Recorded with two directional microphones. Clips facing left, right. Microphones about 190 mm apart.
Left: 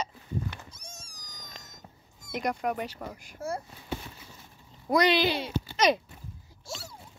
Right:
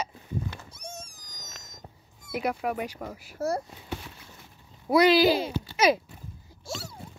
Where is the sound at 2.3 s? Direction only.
5° right (ahead or behind).